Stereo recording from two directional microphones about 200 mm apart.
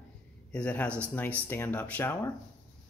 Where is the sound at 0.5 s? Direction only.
5° left (ahead or behind).